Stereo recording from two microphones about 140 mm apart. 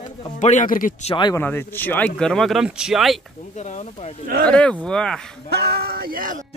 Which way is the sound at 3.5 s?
55° left (ahead or behind).